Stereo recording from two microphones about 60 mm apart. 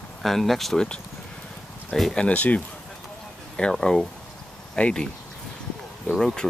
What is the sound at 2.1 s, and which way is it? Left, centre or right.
Speech, left.